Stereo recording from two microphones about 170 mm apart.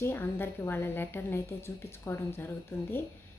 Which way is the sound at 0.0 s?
15° left (ahead or behind).